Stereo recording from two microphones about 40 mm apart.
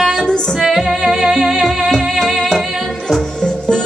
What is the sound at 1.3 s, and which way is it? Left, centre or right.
Music, centre.